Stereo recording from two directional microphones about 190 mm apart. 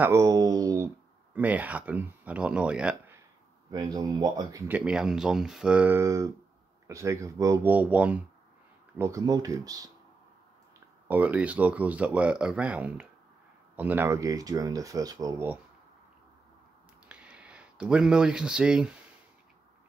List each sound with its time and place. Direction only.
0.0 s speech: 15° right (ahead or behind)
3.7 s speech: 20° right (ahead or behind)
11.1 s speech: 10° right (ahead or behind)
17.1 s speech: 5° right (ahead or behind)